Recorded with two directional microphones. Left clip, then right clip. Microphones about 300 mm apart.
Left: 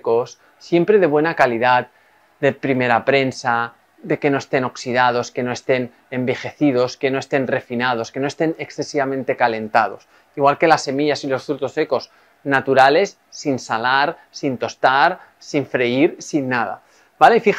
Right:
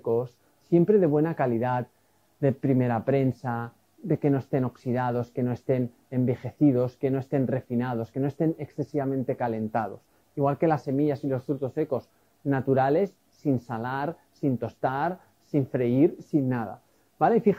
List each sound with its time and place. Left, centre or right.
0.1 s speech: centre